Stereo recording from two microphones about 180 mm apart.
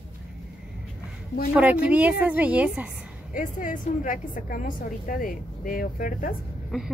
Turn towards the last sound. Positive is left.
turn(degrees=0)  # may be behind; listen again after turning